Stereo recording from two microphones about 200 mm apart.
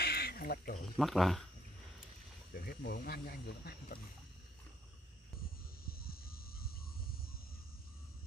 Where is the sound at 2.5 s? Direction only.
50° left (ahead or behind).